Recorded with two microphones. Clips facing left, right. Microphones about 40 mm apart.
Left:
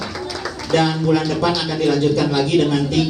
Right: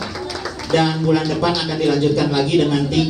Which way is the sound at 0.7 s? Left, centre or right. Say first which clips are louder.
Even; centre.